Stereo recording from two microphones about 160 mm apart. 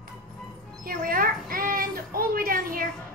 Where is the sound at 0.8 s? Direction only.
65° right (ahead or behind).